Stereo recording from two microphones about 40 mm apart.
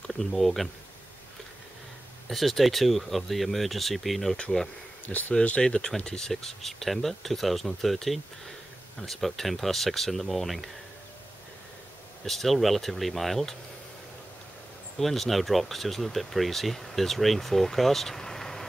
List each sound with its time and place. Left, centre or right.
0.0 s speech: centre
2.2 s speech: centre
6.2 s speech: centre
12.3 s speech: centre
15.0 s speech: centre